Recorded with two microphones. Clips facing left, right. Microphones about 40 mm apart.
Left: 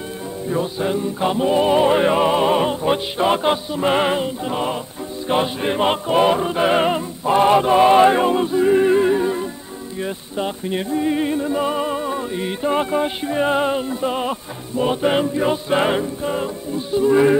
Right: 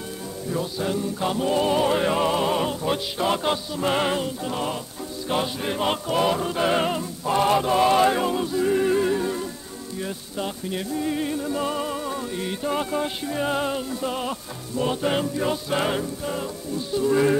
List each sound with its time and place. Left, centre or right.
0.5 s music: left